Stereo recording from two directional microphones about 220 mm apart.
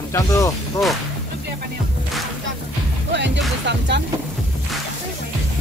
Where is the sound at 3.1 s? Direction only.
55° right (ahead or behind).